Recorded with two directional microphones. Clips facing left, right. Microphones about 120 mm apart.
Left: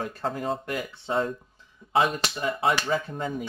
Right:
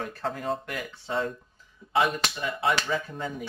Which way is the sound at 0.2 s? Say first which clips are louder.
Left 1 dB; 35° left (ahead or behind).